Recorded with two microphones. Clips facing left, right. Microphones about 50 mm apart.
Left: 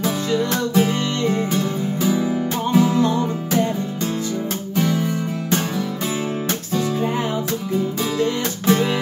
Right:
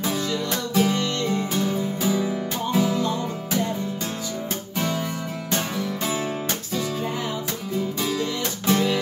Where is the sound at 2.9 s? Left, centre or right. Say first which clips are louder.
Left 6 dB; left.